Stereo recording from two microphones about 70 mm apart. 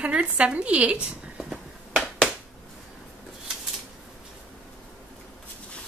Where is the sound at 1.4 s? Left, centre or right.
Centre.